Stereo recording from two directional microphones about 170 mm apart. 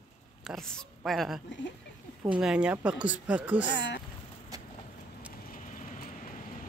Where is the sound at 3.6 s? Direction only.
90° left.